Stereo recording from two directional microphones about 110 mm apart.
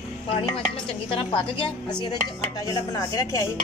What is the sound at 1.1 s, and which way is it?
Speech, 50° left (ahead or behind).